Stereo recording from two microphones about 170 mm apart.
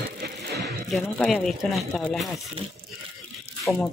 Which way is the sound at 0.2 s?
75° right (ahead or behind).